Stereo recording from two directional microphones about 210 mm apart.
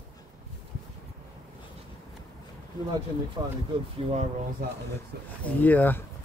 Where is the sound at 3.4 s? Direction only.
20° right (ahead or behind).